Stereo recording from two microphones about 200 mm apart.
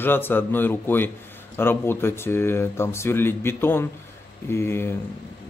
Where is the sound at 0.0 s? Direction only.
10° left (ahead or behind).